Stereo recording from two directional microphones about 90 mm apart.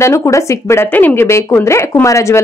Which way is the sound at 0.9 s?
20° left (ahead or behind).